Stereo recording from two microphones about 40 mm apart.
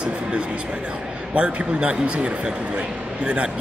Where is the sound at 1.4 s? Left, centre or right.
Right.